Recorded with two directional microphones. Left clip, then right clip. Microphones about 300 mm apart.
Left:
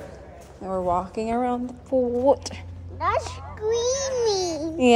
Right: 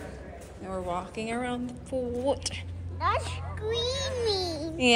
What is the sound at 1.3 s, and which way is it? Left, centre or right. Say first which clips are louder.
Speech: left 8 dB; centre.